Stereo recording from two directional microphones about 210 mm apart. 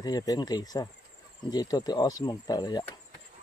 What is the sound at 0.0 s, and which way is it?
Speech, 20° left (ahead or behind).